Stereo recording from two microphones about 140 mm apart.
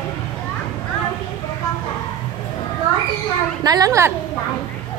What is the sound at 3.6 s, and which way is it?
Speech, 25° right (ahead or behind).